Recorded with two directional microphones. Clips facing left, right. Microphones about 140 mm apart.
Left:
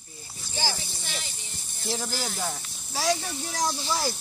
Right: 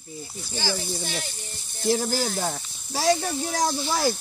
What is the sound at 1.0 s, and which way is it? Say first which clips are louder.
Speech: right 6 dB; 45° right (ahead or behind).